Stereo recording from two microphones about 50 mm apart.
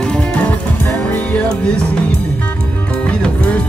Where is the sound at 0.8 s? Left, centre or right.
Left.